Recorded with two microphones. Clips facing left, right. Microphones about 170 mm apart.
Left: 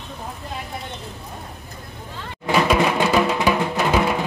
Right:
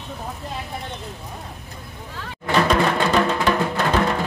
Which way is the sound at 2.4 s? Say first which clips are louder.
Left 1 dB; 10° left (ahead or behind).